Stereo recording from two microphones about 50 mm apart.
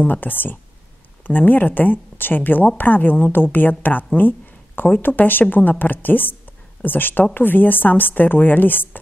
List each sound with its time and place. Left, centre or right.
0.0 s speech: left